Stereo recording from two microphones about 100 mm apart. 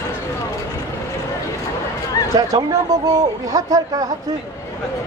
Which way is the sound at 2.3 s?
40° right (ahead or behind).